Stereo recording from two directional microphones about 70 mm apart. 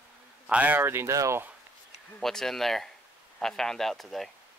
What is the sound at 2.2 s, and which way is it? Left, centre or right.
Speech, centre.